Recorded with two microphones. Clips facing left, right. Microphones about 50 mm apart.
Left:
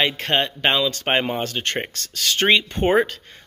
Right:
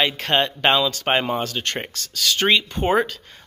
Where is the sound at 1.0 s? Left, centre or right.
Centre.